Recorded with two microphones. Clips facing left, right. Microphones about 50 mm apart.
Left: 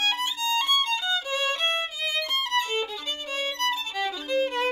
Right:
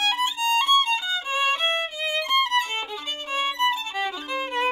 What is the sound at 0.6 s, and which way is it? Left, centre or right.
Violin, right.